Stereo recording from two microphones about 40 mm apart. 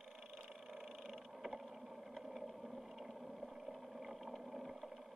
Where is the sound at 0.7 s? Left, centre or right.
Centre.